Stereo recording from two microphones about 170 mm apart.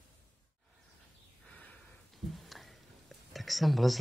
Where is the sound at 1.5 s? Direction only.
10° left (ahead or behind).